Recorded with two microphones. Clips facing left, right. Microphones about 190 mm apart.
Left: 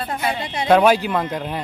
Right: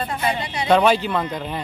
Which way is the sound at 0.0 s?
5° left (ahead or behind).